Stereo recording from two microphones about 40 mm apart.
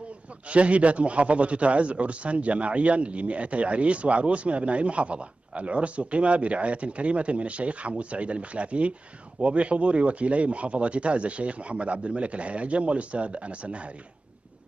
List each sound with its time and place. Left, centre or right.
0.5 s a man's voice: right